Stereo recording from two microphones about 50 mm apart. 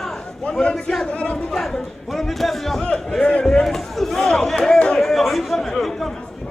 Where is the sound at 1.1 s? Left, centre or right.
Left.